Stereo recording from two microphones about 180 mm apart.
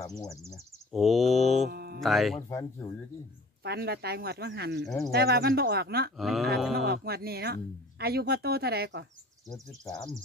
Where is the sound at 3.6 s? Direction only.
60° right (ahead or behind).